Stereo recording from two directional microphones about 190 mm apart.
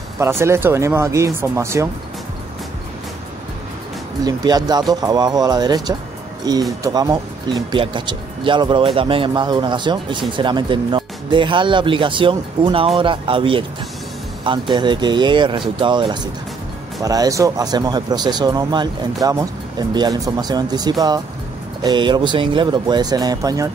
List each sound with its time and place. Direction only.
0.2 s speech: 15° right (ahead or behind)
4.2 s speech: 20° right (ahead or behind)